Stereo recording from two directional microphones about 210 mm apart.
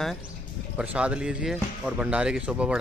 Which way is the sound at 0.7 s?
5° right (ahead or behind).